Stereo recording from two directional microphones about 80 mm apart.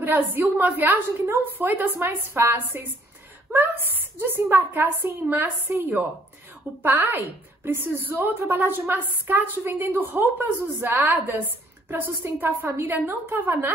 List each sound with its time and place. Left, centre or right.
0.0 s a woman's voice: right
6.8 s a woman's voice: right